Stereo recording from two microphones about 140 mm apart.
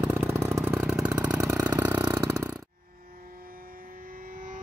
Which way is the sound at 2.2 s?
25° right (ahead or behind).